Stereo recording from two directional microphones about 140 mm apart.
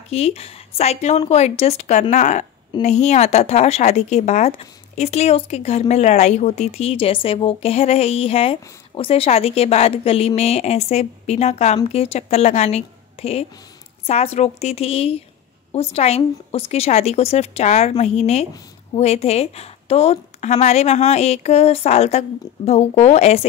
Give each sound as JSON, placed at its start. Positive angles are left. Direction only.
{"t": 0.1, "sound": "speech", "side_deg": 45}